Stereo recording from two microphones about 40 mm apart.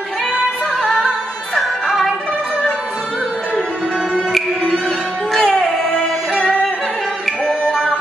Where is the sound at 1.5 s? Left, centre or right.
Centre.